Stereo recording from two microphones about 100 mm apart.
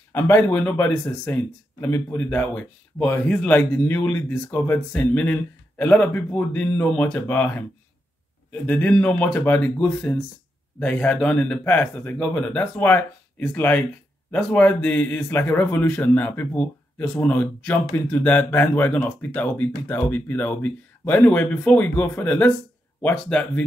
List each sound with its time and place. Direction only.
0.1 s speech: 25° left (ahead or behind)